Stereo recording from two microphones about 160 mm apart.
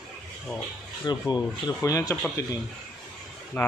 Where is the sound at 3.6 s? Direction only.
10° left (ahead or behind).